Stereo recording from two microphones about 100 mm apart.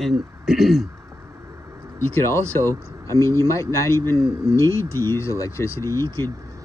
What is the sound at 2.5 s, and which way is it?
Speech, 25° left (ahead or behind).